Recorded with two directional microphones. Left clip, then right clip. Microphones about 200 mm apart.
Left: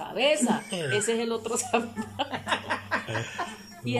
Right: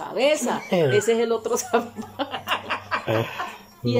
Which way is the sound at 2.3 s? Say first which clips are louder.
Right 4 dB; 30° left (ahead or behind).